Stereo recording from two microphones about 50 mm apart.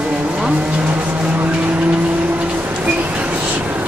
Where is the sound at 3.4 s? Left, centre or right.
Right.